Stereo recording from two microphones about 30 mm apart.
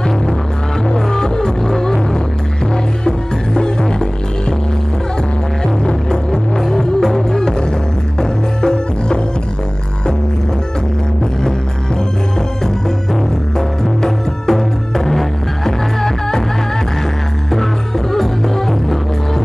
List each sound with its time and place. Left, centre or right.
0.9 s music: left
3.1 s music: left
5.9 s music: left
14.0 s music: centre
17.5 s music: centre